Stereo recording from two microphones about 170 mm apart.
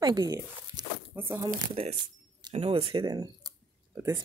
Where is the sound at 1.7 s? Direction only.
30° right (ahead or behind).